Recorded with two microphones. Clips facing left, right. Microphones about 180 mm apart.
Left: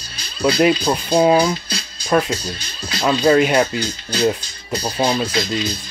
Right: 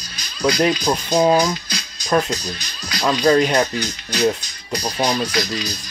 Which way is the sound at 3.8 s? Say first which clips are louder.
Left 1 dB; 30° left (ahead or behind).